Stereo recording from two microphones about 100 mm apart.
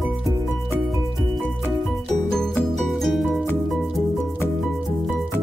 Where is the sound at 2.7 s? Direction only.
5° left (ahead or behind).